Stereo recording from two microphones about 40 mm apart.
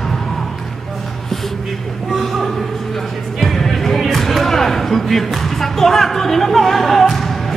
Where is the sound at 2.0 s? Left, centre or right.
Centre.